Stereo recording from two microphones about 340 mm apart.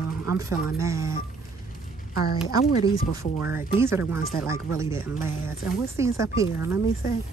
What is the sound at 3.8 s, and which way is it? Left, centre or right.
A woman's voice, centre.